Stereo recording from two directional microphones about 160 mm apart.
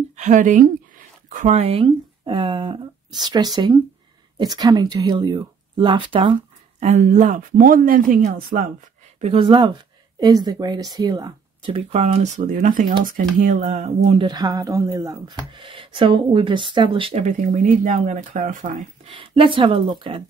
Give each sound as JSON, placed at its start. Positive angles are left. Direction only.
{"t": 0.1, "sound": "speech", "side_deg": -50}
{"t": 6.8, "sound": "speech", "side_deg": -50}
{"t": 9.2, "sound": "speech", "side_deg": -35}
{"t": 13.6, "sound": "speech", "side_deg": -45}
{"t": 19.0, "sound": "speech", "side_deg": -35}